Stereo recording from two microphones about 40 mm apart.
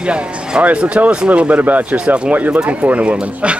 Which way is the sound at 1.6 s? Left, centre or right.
Right.